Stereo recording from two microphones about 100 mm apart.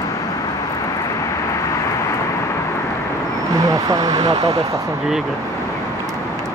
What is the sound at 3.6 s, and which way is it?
Speech, 35° right (ahead or behind).